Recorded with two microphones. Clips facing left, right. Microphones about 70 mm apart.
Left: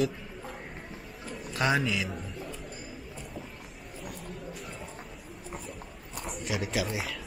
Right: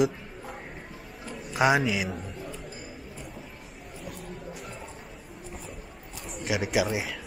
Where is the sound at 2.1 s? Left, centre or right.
Centre.